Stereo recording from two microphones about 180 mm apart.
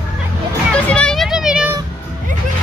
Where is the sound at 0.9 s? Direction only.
5° left (ahead or behind).